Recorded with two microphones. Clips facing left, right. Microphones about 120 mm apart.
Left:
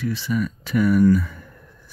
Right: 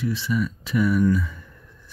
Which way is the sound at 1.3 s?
55° left (ahead or behind).